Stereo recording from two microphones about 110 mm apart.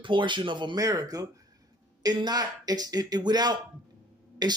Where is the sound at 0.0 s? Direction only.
45° right (ahead or behind).